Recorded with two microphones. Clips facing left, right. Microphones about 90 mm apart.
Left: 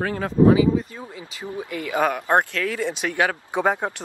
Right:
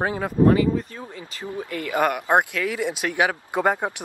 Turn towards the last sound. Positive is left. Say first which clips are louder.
# even
turn(degrees=-15)  # may be behind; listen again after turning